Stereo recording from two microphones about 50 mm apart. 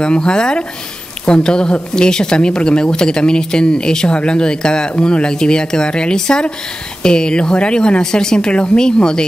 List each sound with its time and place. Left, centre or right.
0.0 s speech: centre